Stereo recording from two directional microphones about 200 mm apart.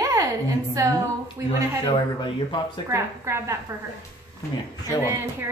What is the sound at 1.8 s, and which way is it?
Speech, 25° left (ahead or behind).